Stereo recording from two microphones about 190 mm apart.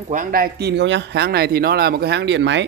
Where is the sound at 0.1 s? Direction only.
45° right (ahead or behind).